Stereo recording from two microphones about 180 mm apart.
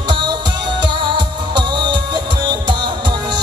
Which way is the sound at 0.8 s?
25° right (ahead or behind).